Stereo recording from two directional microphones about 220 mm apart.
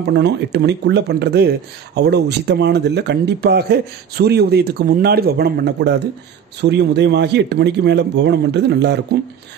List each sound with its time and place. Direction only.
0.0 s speech: 50° right (ahead or behind)